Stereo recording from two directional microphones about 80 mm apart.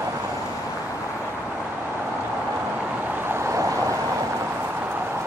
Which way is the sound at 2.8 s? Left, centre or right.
Centre.